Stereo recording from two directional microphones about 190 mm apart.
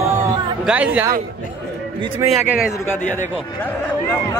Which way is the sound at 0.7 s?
10° right (ahead or behind).